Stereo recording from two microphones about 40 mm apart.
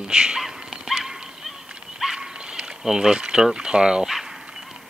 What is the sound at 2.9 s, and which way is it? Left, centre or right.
Speech, centre.